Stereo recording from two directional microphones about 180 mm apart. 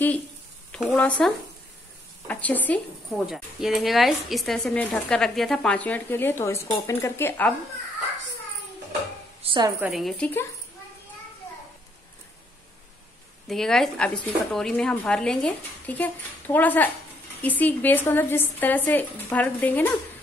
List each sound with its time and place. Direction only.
0.7 s speech: 5° left (ahead or behind)
9.4 s a sound: 30° right (ahead or behind)
9.8 s a woman's voice: 5° right (ahead or behind)
13.5 s a woman's voice: centre (ahead or behind)